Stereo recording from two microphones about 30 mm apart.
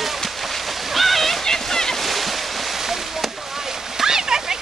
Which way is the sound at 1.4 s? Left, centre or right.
Centre.